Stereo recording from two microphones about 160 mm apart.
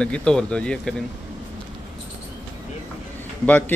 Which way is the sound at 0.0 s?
5° left (ahead or behind).